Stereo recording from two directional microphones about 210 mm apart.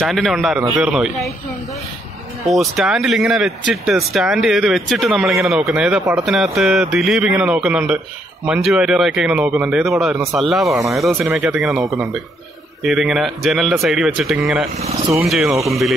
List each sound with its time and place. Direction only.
0.0 s speech: centre (ahead or behind)
2.4 s speech: centre (ahead or behind)
10.7 s speech: 15° right (ahead or behind)
12.8 s speech: centre (ahead or behind)